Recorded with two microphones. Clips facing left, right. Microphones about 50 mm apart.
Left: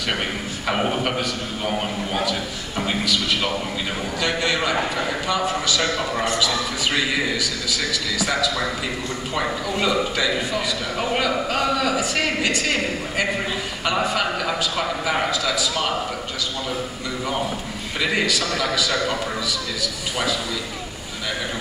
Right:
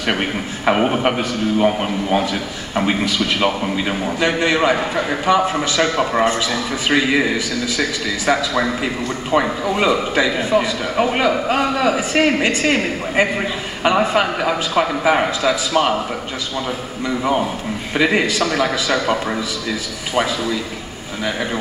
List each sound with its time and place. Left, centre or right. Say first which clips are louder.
1.6 s a man's voice: right 6 dB; right
17.9 s a man's voice: right 5 dB; right